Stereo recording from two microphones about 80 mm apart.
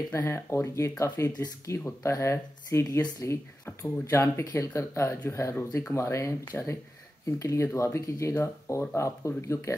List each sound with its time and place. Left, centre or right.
0.1 s speech: left
6.5 s speech: left
7.2 s speech: left